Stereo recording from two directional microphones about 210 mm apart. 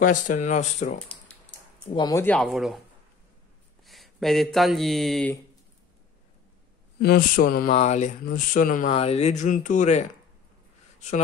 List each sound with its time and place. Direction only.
0.0 s speech: 35° left (ahead or behind)
1.9 s speech: 20° left (ahead or behind); by 2.8 s centre (ahead or behind)
3.8 s speech: centre (ahead or behind)
7.0 s speech: 45° left (ahead or behind)